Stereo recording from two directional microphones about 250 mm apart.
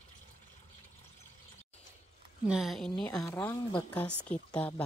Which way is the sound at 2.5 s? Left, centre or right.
Centre.